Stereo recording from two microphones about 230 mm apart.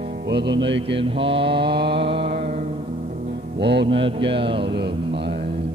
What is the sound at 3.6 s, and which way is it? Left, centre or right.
Music, right.